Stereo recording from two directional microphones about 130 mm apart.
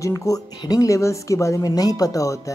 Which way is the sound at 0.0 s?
25° left (ahead or behind).